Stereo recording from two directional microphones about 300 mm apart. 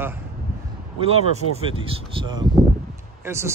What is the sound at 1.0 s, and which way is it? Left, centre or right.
Speech, centre.